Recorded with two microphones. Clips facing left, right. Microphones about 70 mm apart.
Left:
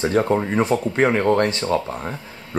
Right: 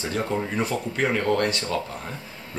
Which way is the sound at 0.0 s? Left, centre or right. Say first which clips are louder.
Left 8 dB; left.